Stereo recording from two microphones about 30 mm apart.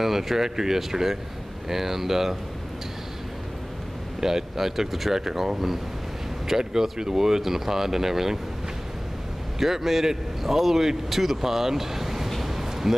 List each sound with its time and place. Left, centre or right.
0.0 s a man's voice: centre
4.2 s a man's voice: centre
6.6 s a man's voice: centre
9.6 s a man's voice: centre
12.3 s a sound: centre